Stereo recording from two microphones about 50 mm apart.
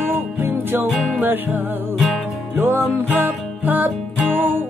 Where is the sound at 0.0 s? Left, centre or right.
Right.